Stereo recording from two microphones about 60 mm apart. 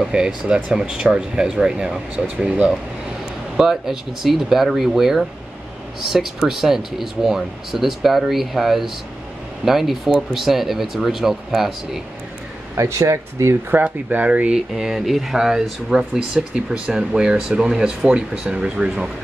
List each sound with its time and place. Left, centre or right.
0.1 s speech: centre
3.5 s speech: centre
12.7 s speech: right
13.8 s speech: right
14.5 s speech: centre